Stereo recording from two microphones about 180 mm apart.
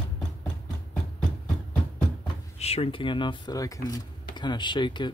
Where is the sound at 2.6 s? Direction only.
35° left (ahead or behind).